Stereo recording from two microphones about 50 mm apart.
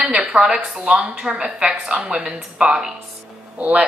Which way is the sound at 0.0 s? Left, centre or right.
Centre.